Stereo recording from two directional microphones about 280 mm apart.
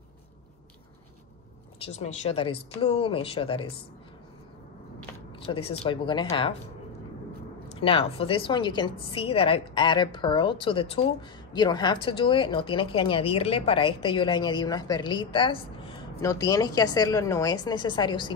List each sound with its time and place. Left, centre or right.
1.9 s speech: left
5.5 s a woman's voice: centre
7.8 s a woman's voice: centre